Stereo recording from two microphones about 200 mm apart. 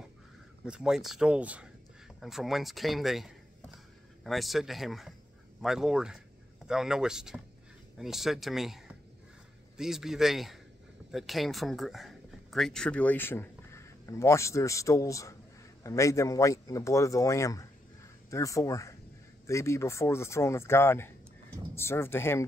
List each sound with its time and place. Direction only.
0.7 s a man's voice: 5° right (ahead or behind)